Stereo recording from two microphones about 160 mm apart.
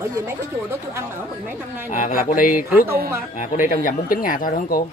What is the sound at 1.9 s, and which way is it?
Speech, 55° left (ahead or behind).